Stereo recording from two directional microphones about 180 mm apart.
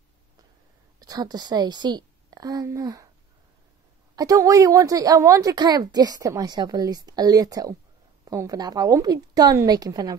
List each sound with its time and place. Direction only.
0.9 s a woman's voice: 20° right (ahead or behind)
4.1 s a woman's voice: 20° right (ahead or behind)